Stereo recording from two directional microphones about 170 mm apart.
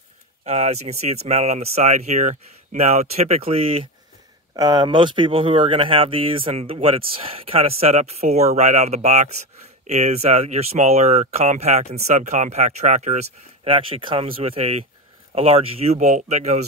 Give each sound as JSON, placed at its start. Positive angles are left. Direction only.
{"t": 0.5, "sound": "speech", "side_deg": -40}
{"t": 4.6, "sound": "speech", "side_deg": -25}